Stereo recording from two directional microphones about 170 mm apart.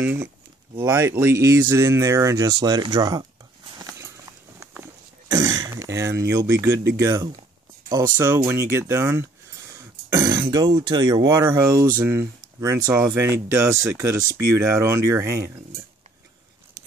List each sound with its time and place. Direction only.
0.0 s speech: 10° right (ahead or behind)
3.7 s clip-clop: 20° right (ahead or behind)
5.3 s throat clearing: 20° right (ahead or behind)
7.0 s speech: 20° right (ahead or behind)